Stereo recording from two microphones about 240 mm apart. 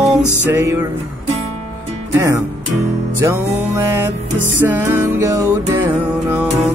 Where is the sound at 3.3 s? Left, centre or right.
Centre.